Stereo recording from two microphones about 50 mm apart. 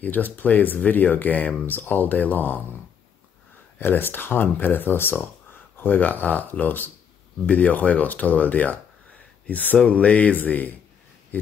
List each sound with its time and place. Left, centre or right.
0.0 s speech: left
3.8 s speech: left